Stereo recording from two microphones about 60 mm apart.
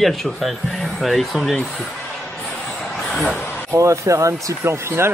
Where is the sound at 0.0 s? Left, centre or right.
Centre.